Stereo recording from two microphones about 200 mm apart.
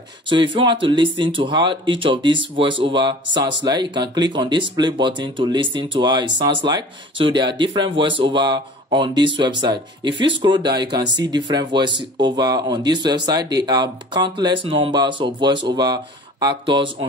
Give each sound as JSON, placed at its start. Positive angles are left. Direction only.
{"t": 0.3, "sound": "speech", "side_deg": -25}